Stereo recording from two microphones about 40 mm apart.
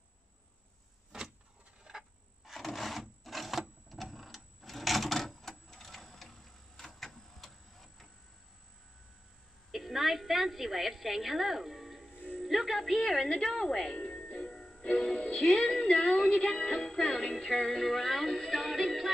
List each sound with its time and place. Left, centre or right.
1.1 s a sound: centre
2.5 s sewing machine: centre
5.9 s printer: centre
9.7 s a woman's voice: centre
13.3 s a woman's voice: centre
13.9 s music: left
17.8 s music: centre